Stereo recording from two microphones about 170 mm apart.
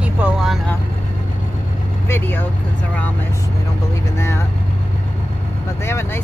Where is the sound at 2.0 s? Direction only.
10° left (ahead or behind).